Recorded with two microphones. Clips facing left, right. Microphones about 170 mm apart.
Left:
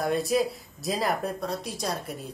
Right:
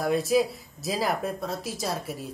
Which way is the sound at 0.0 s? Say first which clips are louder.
Right 2 dB; centre (ahead or behind).